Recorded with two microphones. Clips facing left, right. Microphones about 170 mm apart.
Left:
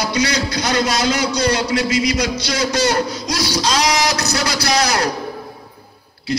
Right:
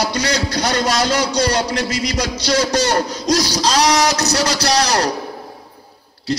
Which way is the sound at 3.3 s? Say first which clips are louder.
Even; 40° right (ahead or behind).